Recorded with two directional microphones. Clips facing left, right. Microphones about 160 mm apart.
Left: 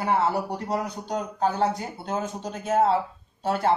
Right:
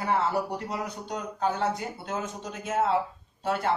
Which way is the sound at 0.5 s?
40° left (ahead or behind).